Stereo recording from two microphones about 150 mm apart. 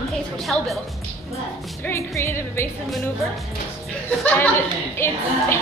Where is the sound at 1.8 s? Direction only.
20° left (ahead or behind).